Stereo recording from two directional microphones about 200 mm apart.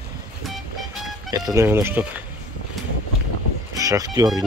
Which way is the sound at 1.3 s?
15° right (ahead or behind).